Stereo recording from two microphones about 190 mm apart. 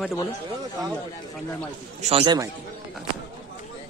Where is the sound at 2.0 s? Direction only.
30° right (ahead or behind).